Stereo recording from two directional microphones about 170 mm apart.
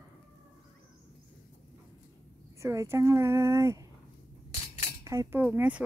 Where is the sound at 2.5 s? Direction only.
15° right (ahead or behind).